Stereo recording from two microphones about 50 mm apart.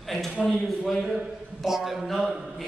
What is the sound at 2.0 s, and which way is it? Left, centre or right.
Speech, centre.